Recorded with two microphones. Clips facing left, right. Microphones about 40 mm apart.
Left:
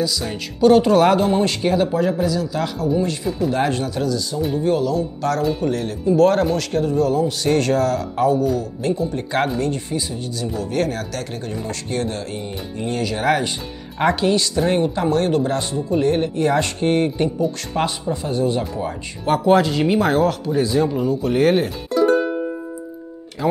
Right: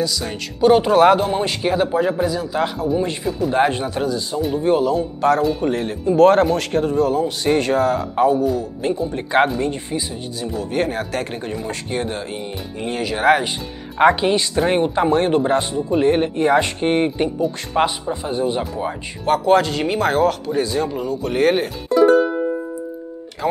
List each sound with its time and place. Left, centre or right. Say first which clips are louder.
0.0 s speech: even; centre
0.6 s speech: even; centre
4.4 s speech: right 2 dB; centre
4.6 s speech: right 3 dB; right
11.1 s speech: right 3 dB; right
11.5 s speech: even; centre
19.2 s speech: even; centre
23.4 s speech: left 1 dB; centre